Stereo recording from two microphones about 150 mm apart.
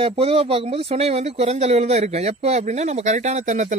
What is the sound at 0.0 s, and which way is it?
Speech, 40° right (ahead or behind).